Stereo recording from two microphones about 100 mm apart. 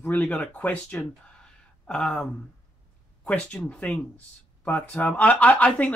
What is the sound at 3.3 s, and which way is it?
Speech, 10° left (ahead or behind).